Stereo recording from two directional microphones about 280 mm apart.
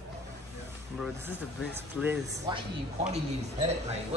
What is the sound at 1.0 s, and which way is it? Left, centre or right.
Speech, centre.